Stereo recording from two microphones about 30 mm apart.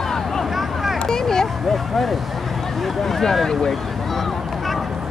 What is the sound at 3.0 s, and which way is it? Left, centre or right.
Speech, centre.